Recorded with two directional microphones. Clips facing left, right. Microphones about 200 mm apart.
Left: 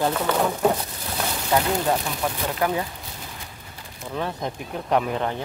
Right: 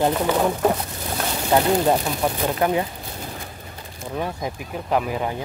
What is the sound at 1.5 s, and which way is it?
Speech, 30° right (ahead or behind).